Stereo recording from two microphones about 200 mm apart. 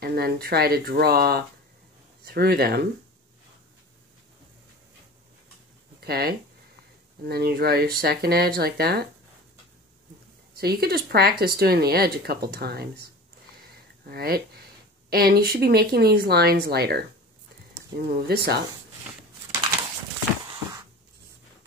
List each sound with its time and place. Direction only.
0.0 s speech: 50° right (ahead or behind)
5.9 s speech: 50° right (ahead or behind)
10.5 s speech: 50° right (ahead or behind)